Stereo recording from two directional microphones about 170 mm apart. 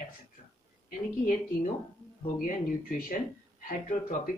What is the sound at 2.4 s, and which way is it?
Speech, 55° left (ahead or behind).